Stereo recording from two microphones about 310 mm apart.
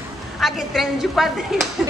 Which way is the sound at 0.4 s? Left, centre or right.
Centre.